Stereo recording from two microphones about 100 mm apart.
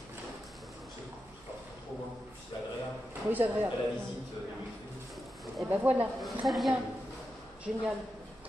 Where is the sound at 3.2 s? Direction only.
15° right (ahead or behind).